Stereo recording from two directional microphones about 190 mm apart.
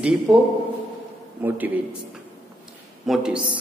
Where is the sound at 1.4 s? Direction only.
10° right (ahead or behind).